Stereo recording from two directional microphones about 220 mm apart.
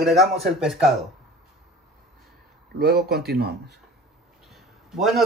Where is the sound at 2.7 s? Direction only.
45° right (ahead or behind).